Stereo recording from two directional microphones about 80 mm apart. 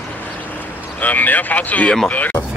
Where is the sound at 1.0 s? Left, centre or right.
Left.